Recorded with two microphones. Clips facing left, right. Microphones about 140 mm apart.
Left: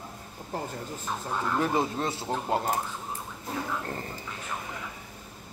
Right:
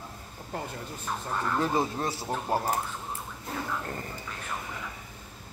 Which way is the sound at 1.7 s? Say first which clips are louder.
Left 1 dB; 20° left (ahead or behind).